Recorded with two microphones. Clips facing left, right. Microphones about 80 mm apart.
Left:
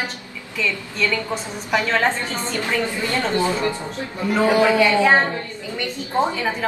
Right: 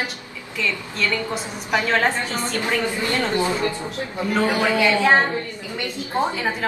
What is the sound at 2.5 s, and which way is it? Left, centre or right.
A woman's voice, left.